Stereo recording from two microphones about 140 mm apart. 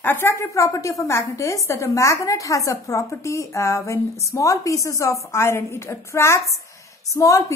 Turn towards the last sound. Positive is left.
turn(degrees=20)  # may be behind; listen again after turning